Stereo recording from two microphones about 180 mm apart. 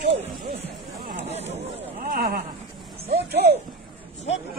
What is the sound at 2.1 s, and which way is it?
Speech, 60° right (ahead or behind).